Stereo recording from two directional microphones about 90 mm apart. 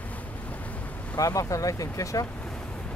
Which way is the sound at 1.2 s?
40° left (ahead or behind).